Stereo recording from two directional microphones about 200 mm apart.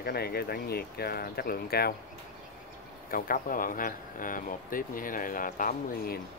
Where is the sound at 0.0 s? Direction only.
50° left (ahead or behind).